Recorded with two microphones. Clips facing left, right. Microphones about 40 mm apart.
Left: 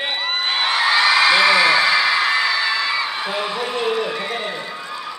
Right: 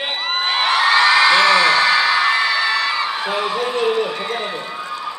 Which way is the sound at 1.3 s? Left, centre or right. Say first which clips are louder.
Right 1 dB; centre.